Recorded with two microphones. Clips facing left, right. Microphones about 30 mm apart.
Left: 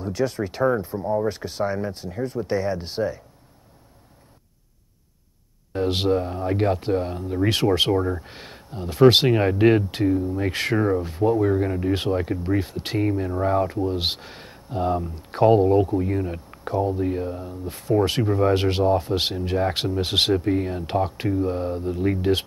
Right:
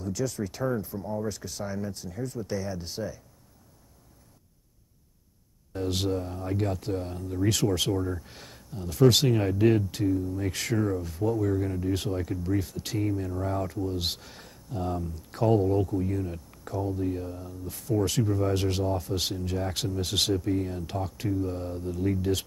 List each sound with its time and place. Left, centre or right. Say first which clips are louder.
0.0 s speech: left 6 dB; left
5.7 s speech: left 7 dB; left